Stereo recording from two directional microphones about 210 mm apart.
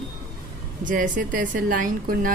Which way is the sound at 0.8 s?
40° right (ahead or behind).